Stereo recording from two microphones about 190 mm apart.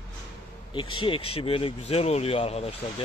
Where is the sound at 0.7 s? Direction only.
25° left (ahead or behind).